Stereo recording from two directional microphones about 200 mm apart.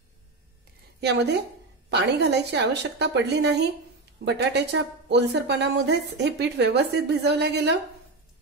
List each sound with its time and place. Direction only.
1.9 s speech: 55° right (ahead or behind)